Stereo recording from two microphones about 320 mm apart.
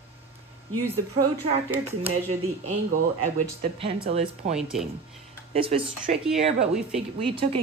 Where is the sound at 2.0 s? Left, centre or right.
Centre.